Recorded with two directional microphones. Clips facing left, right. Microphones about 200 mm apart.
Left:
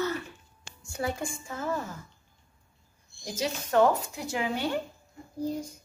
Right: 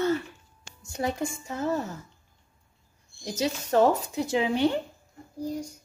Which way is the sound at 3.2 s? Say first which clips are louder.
Right 3 dB; 25° right (ahead or behind).